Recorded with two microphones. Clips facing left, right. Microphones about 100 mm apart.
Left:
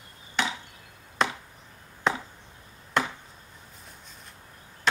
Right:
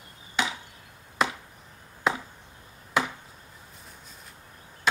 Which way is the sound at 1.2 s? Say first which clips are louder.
Even; 5° right (ahead or behind).